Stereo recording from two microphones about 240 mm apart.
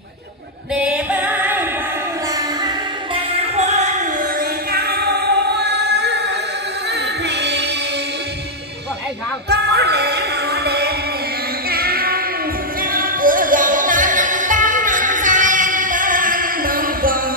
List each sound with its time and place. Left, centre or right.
0.7 s music: centre
3.3 s music: right
4.7 s music: right
9.5 s music: right